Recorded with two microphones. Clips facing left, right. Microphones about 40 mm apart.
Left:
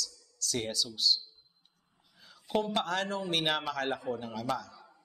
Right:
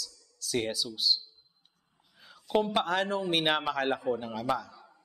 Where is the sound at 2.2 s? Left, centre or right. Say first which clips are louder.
Right 3 dB; centre.